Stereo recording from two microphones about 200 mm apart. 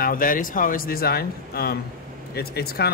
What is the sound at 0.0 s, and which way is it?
Speech, 45° left (ahead or behind).